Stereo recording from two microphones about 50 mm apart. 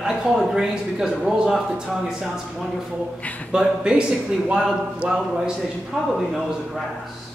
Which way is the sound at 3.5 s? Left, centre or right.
Centre.